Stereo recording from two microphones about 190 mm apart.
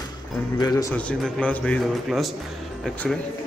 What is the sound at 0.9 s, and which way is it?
A man's voice, 5° left (ahead or behind).